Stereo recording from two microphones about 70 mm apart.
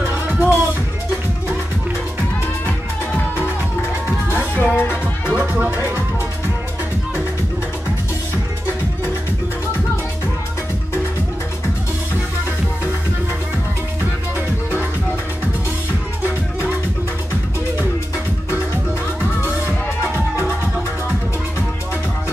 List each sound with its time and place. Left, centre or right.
0.3 s music: right
2.6 s music: left
5.5 s music: right